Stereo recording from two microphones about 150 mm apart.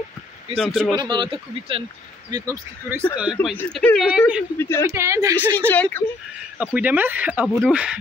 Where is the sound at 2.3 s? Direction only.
20° right (ahead or behind).